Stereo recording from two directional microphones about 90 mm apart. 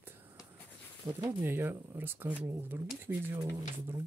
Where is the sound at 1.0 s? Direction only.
50° right (ahead or behind).